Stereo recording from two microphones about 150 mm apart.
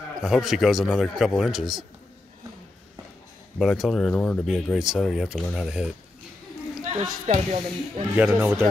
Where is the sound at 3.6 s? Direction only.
Centre (ahead or behind).